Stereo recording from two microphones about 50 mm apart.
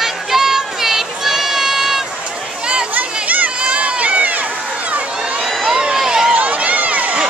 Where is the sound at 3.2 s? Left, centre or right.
Right.